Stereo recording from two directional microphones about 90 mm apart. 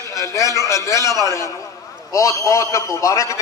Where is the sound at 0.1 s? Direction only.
35° left (ahead or behind).